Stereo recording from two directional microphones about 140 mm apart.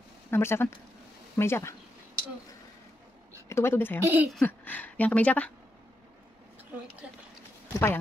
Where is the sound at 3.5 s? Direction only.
15° left (ahead or behind).